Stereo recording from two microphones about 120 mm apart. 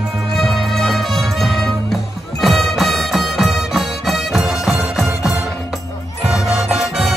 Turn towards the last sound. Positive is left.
turn(degrees=-5)  # may be behind; listen again after turning